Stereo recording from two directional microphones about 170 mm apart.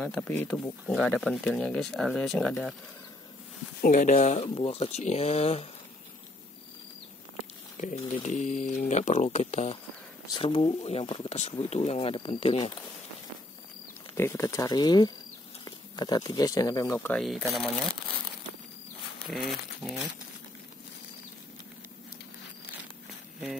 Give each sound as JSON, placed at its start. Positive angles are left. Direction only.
{"t": 0.0, "sound": "speech", "side_deg": 5}
{"t": 3.8, "sound": "speech", "side_deg": 50}
{"t": 7.8, "sound": "speech", "side_deg": 45}
{"t": 14.1, "sound": "speech", "side_deg": 15}
{"t": 19.8, "sound": "speech", "side_deg": 5}